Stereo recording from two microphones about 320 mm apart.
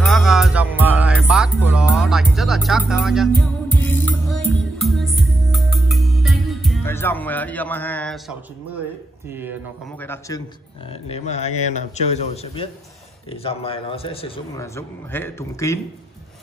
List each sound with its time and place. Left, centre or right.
0.0 s music: centre
9.3 s speech: centre
9.9 s a man's voice: centre